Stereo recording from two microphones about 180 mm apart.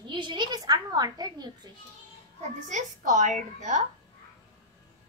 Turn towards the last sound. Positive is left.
turn(degrees=-45)  # may be behind; listen again after turning